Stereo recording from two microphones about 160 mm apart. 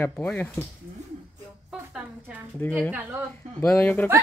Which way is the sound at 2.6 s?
5° left (ahead or behind).